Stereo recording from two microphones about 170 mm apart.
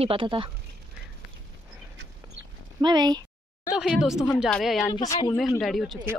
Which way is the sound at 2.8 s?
25° right (ahead or behind).